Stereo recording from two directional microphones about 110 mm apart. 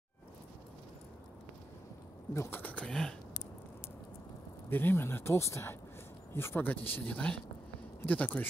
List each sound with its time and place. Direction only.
2.3 s speech: 20° left (ahead or behind)
4.6 s speech: 20° left (ahead or behind)